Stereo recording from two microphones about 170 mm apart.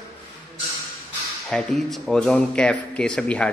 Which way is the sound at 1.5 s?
Centre (ahead or behind).